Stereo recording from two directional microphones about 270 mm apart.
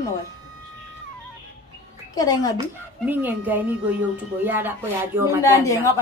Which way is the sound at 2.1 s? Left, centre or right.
Centre.